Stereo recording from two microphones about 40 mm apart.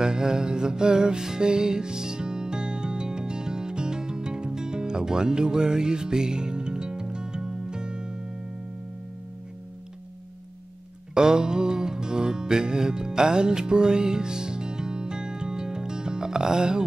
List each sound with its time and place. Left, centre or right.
0.0 s music: centre
11.1 s music: centre